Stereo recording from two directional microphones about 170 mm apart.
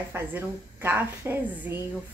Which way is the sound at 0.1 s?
10° right (ahead or behind).